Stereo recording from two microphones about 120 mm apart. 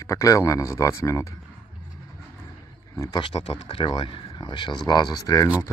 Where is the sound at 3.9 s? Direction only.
40° left (ahead or behind).